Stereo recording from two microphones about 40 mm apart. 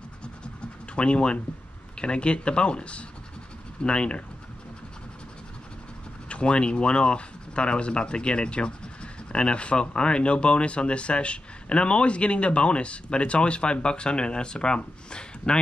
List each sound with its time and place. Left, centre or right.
0.9 s speech: left
6.2 s speech: left